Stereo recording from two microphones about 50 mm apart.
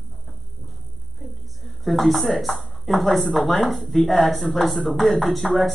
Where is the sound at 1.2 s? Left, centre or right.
Centre.